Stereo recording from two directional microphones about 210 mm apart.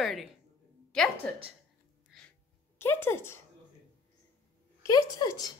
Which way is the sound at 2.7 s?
10° left (ahead or behind).